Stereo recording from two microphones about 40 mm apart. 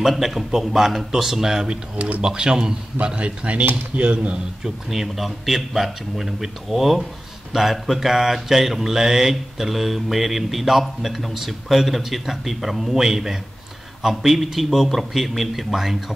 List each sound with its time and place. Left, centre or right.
0.1 s mantra: centre
2.2 s speech: centre
4.6 s a man's voice: centre
7.5 s mantra: centre
14.9 s a man's voice: centre